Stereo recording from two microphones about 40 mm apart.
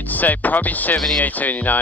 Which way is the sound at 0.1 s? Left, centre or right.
Left.